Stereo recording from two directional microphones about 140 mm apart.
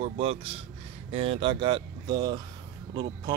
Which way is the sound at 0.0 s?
45° right (ahead or behind).